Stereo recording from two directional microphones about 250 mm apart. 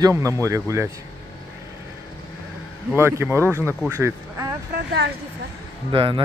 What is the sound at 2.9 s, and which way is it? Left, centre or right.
Speech, centre.